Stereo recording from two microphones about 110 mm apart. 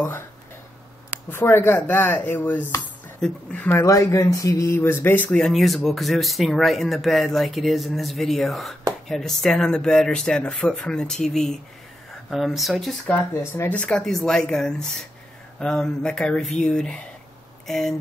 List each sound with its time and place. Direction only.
1.3 s speech: 20° left (ahead or behind)
3.2 s speech: 5° left (ahead or behind)
3.6 s speech: 25° left (ahead or behind); by 13.0 s centre (ahead or behind)
13.3 s speech: 25° left (ahead or behind)
13.7 s speech: 5° left (ahead or behind)